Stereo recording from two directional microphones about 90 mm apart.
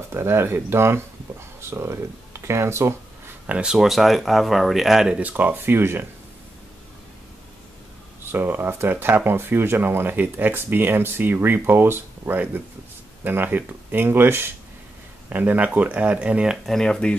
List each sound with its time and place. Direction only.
0.1 s speech: 25° right (ahead or behind)
3.4 s speech: 15° right (ahead or behind)
3.7 s speech: centre (ahead or behind)
5.2 s speech: 20° right (ahead or behind)
8.3 s speech: 25° right (ahead or behind)
16.6 s speech: 5° left (ahead or behind)